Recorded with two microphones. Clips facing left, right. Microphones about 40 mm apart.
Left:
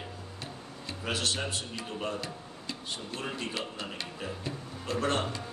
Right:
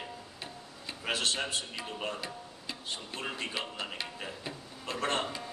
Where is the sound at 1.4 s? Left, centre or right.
Centre.